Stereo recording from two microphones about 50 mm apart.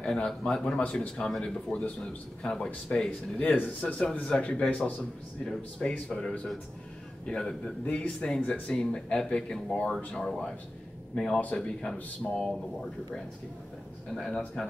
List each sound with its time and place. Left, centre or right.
0.0 s speech: centre
0.7 s speech: left
3.1 s speech: left
5.4 s speech: centre
7.8 s speech: left
8.7 s speech: centre
14.1 s speech: centre